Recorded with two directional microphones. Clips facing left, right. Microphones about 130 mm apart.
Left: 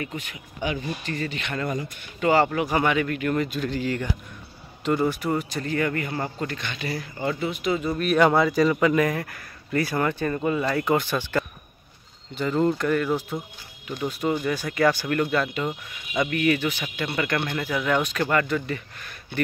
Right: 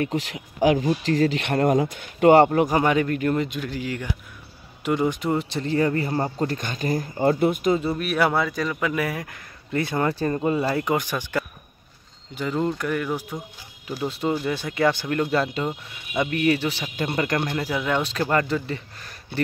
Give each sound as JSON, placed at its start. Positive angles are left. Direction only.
{"t": 0.1, "sound": "speech", "side_deg": -90}
{"t": 3.3, "sound": "speech", "side_deg": -20}
{"t": 7.9, "sound": "speech", "side_deg": -10}
{"t": 9.3, "sound": "speech", "side_deg": -20}
{"t": 10.8, "sound": "speech", "side_deg": -15}
{"t": 14.0, "sound": "speech", "side_deg": -30}